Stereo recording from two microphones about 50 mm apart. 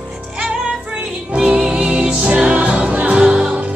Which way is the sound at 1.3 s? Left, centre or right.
Centre.